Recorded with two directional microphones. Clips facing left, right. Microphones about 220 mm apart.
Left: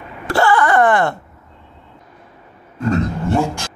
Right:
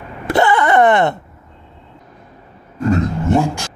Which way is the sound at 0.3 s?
20° right (ahead or behind).